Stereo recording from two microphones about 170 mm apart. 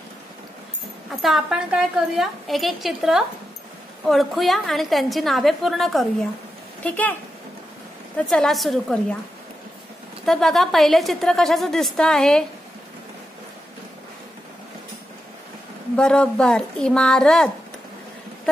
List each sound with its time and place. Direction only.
1.2 s a woman's voice: centre (ahead or behind)
8.3 s a woman's voice: centre (ahead or behind)
10.2 s a woman's voice: 5° left (ahead or behind)
16.0 s a woman's voice: 5° left (ahead or behind)